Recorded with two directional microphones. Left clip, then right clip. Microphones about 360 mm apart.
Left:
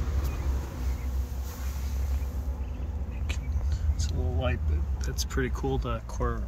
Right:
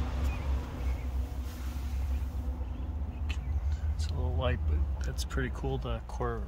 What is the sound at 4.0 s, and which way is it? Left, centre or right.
Vehicle, centre.